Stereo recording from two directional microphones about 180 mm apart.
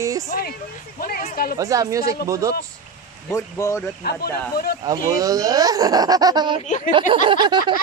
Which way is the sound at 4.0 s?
60° left (ahead or behind).